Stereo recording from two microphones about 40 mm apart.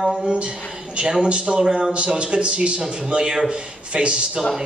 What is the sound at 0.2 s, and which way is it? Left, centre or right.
Speech, right.